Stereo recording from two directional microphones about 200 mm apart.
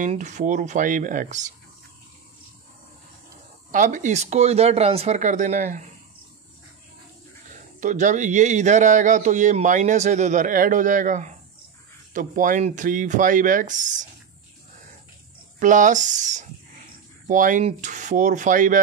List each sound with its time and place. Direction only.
0.0 s speech: 35° right (ahead or behind)
3.7 s speech: 40° right (ahead or behind)
7.8 s speech: 40° right (ahead or behind)
15.6 s speech: 40° right (ahead or behind)